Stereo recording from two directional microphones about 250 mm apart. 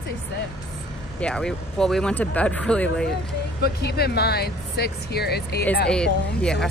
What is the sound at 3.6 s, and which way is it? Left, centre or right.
Speech, left.